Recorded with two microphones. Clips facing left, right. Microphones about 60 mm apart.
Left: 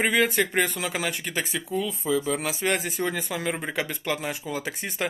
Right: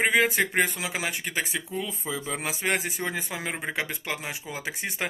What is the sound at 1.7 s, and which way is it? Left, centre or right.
Speech, right.